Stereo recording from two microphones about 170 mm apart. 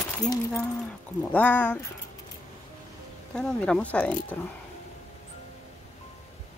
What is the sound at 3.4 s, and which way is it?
Speech, 5° left (ahead or behind).